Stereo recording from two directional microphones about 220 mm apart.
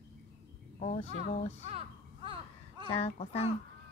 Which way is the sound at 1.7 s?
25° right (ahead or behind).